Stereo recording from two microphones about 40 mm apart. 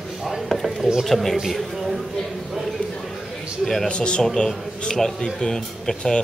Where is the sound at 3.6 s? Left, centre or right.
Centre.